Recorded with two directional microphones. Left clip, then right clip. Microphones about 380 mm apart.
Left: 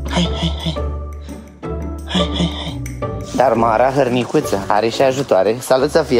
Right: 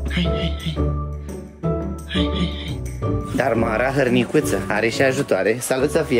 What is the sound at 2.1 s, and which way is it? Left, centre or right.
Music, centre.